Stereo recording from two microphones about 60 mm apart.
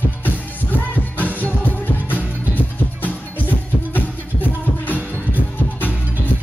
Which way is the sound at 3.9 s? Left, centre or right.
Left.